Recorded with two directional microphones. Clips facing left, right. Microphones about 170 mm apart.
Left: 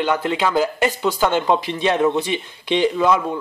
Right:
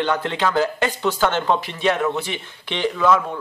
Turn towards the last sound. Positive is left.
turn(degrees=15)  # may be behind; listen again after turning